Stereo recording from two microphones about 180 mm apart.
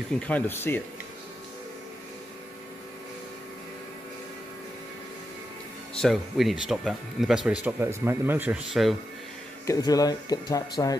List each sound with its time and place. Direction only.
0.3 s speech: 10° left (ahead or behind)
5.9 s speech: centre (ahead or behind)
9.7 s speech: 20° left (ahead or behind)